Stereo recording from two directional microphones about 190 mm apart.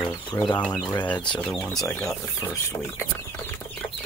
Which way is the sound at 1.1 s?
25° left (ahead or behind).